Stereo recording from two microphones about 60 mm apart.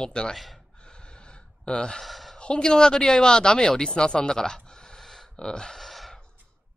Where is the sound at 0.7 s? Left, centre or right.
Centre.